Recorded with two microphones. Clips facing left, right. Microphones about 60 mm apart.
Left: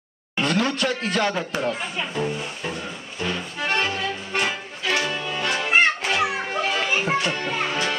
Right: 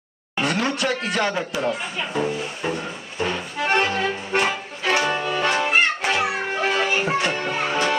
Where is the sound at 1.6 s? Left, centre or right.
Centre.